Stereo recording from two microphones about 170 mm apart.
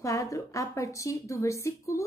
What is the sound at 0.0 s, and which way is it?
A woman's voice, 20° left (ahead or behind).